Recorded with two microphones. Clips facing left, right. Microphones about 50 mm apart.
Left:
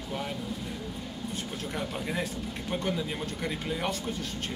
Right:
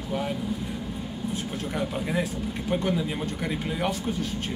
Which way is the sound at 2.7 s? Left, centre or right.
Centre.